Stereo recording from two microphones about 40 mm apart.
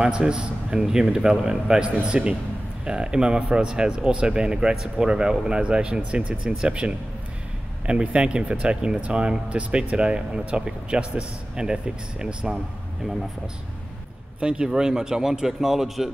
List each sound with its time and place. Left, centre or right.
0.0 s speech: right
14.4 s a man's voice: right; by 16.1 s centre